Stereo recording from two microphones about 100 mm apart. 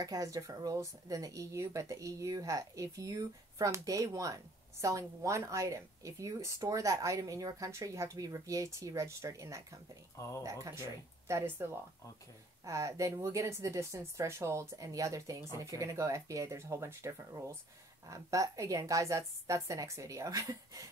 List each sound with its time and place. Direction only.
0.0 s a woman's voice: 35° right (ahead or behind)
10.1 s speech: 30° left (ahead or behind)
10.4 s a woman's voice: 30° right (ahead or behind)